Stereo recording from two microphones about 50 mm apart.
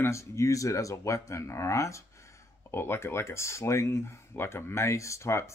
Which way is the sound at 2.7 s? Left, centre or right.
Left.